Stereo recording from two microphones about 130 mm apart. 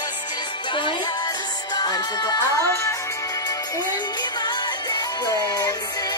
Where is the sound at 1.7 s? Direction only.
30° left (ahead or behind).